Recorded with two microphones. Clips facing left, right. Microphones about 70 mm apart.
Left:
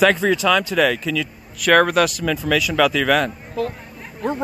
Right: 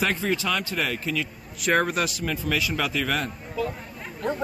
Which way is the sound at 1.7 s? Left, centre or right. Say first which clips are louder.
Left 8 dB; left.